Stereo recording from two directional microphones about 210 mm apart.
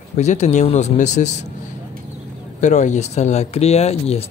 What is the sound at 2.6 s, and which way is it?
Speech, 35° left (ahead or behind).